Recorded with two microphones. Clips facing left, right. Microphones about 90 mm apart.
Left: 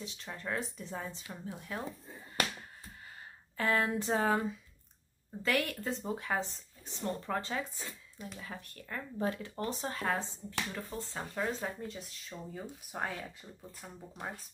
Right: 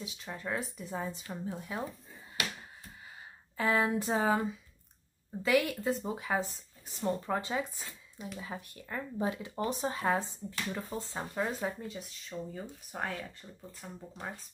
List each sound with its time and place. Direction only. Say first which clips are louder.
0.0 s speech: right 2 dB; 5° right (ahead or behind)
3.5 s speech: right 2 dB; 5° right (ahead or behind)
5.4 s speech: right 4 dB; 5° right (ahead or behind)
11.6 s speech: right 3 dB; centre (ahead or behind)